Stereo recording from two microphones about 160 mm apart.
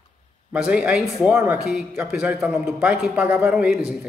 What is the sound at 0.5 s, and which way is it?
Speech, 5° right (ahead or behind).